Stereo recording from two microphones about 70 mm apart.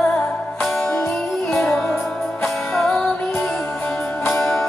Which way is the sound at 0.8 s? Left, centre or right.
Left.